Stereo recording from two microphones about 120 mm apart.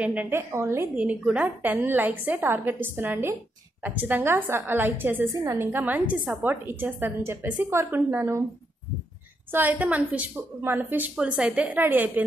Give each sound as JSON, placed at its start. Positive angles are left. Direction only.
{"t": 0.0, "sound": "a woman's voice", "side_deg": -10}
{"t": 0.9, "sound": "a woman's voice", "side_deg": -10}
{"t": 9.5, "sound": "a woman's voice", "side_deg": -15}